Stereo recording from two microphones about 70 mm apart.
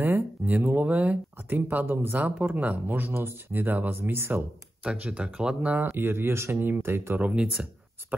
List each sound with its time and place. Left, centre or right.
0.5 s speech: right
4.8 s speech: centre
5.9 s speech: right
7.2 s speech: centre